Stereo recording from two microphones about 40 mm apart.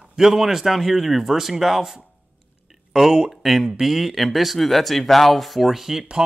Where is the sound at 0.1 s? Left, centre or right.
Centre.